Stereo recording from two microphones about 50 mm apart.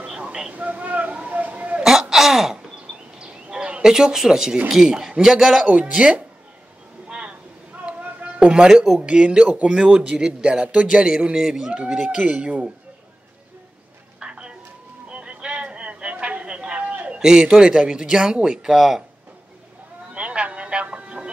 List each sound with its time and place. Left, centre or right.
0.5 s a sound: right
1.8 s throat clearing: centre
3.8 s a man's voice: centre
5.9 s a man's voice: right
7.1 s vehicle: right
7.7 s a sound: right
8.5 s a man's voice: centre
9.0 s a man's voice: right
12.2 s a man's voice: right
14.2 s a sound: centre
17.2 s a man's voice: centre
20.2 s music: right